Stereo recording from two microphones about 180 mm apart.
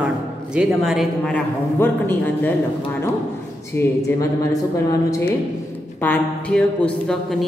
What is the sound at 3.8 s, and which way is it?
A woman's voice, 15° left (ahead or behind).